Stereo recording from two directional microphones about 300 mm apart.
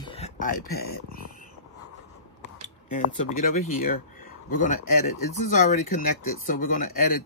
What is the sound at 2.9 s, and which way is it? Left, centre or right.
Speech, left.